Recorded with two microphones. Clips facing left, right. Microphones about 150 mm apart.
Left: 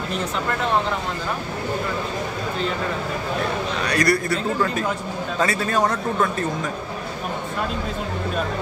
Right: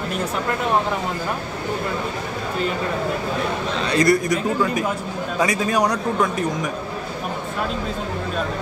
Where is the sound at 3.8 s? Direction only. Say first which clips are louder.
Right 4 dB; 25° right (ahead or behind).